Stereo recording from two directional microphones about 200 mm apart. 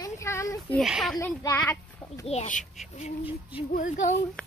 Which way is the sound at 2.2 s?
35° left (ahead or behind).